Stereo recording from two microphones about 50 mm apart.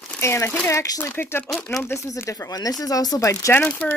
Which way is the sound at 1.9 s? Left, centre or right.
Left.